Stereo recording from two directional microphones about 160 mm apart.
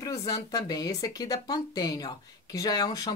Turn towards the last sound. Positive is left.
turn(degrees=25)  # may be behind; listen again after turning